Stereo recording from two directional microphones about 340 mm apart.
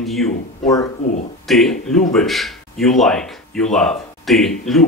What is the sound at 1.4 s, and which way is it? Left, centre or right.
Speech, centre.